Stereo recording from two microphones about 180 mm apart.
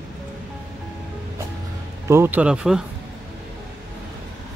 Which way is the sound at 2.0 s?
15° right (ahead or behind).